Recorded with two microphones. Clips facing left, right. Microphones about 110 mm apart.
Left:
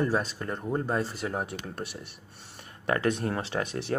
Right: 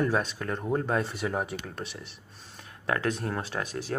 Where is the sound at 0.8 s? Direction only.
Centre (ahead or behind).